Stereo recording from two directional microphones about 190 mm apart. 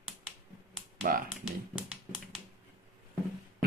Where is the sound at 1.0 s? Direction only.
50° right (ahead or behind).